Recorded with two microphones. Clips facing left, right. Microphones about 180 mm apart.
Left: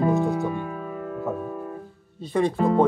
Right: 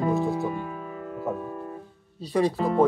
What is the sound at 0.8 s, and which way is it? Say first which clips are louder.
Music: left 4 dB; 50° left (ahead or behind).